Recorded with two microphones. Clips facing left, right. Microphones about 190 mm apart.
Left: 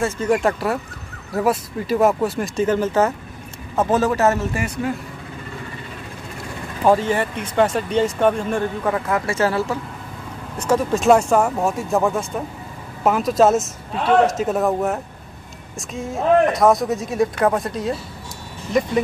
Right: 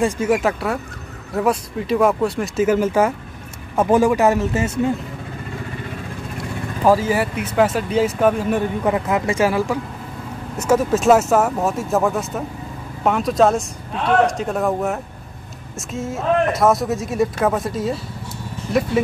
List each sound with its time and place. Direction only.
0.0 s speech: 5° right (ahead or behind); by 4.9 s 25° right (ahead or behind)
6.9 s speech: 5° right (ahead or behind)
8.9 s speech: 20° right (ahead or behind); by 17.9 s centre (ahead or behind)